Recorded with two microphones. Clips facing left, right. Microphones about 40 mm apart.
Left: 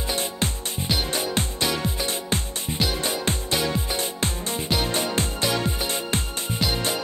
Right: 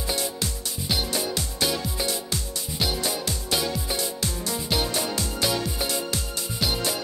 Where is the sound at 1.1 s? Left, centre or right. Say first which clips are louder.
Left 2 dB; left.